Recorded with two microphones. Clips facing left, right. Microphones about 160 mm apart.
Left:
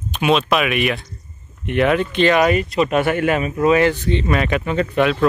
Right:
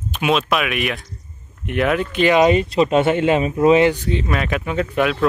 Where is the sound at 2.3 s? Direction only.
25° right (ahead or behind).